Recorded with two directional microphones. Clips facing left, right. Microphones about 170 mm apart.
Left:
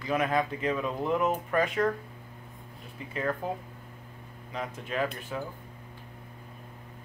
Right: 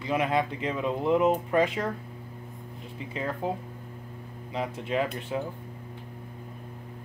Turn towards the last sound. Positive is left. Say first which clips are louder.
# right 3 dB
turn(degrees=-25)  # may be behind; listen again after turning